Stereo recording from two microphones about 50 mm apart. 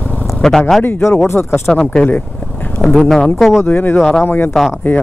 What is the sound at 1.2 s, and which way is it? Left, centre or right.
Speech, left.